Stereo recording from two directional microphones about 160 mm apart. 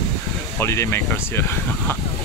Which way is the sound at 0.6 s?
15° left (ahead or behind).